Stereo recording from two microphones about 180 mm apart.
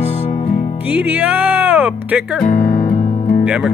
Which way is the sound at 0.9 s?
10° right (ahead or behind).